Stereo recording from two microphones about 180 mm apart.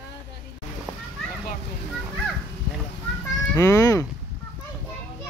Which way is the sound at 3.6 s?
15° left (ahead or behind).